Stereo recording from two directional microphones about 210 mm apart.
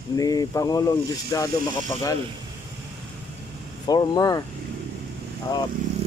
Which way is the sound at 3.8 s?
20° left (ahead or behind).